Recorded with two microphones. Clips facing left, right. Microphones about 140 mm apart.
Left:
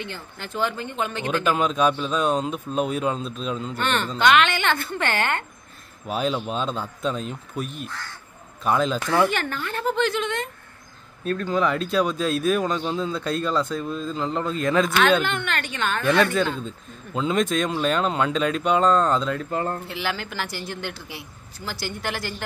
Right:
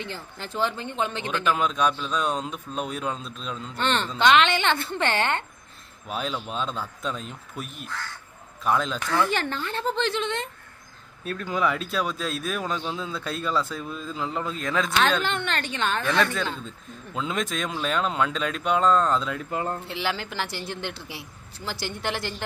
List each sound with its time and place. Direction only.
0.0 s a man's voice: 30° right (ahead or behind)
1.3 s speech: 5° left (ahead or behind)
3.8 s a man's voice: 25° right (ahead or behind)
6.0 s speech: centre (ahead or behind)
9.3 s a man's voice: 30° right (ahead or behind)
11.2 s speech: 10° right (ahead or behind)
15.2 s a woman's voice: 30° right (ahead or behind)
16.0 s speech: centre (ahead or behind)
19.9 s a man's voice: 30° right (ahead or behind)